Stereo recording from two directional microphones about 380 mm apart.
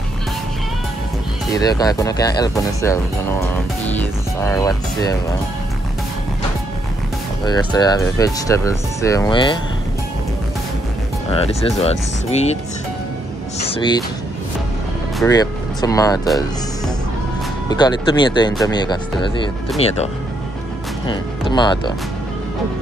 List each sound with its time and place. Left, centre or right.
1.5 s speech: centre
7.4 s speech: centre
11.2 s speech: centre
13.6 s speech: centre
15.1 s speech: centre
21.1 s speech: centre